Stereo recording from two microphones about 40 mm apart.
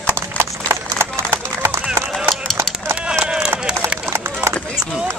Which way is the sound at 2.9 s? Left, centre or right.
Right.